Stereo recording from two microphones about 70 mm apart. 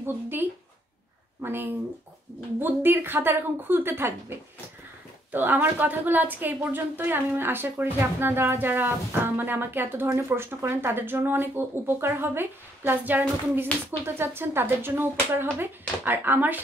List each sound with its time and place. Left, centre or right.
0.0 s speech: right
5.3 s a woman's voice: right